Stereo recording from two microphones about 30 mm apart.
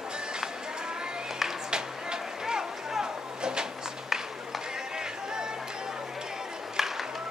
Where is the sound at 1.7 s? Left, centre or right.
Right.